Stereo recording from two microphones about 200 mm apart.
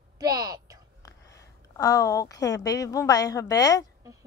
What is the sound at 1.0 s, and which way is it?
A woman's voice, 15° left (ahead or behind).